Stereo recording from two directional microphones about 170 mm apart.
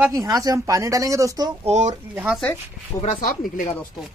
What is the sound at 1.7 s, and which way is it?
Speech, 45° right (ahead or behind).